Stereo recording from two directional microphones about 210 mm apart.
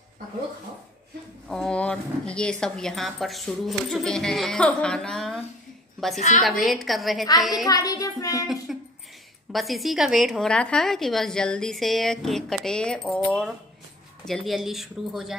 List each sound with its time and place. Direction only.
1.5 s a woman's voice: 5° left (ahead or behind)
6.1 s a woman's voice: 35° left (ahead or behind)
6.6 s a woman's voice: centre (ahead or behind)
7.6 s speech: 15° left (ahead or behind)
8.7 s a sound: centre (ahead or behind)
9.5 s a woman's voice: centre (ahead or behind)